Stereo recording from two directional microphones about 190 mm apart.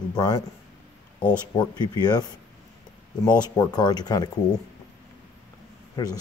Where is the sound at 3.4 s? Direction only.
20° left (ahead or behind).